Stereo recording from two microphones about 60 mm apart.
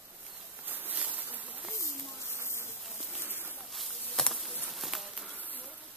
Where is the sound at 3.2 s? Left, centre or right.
Right.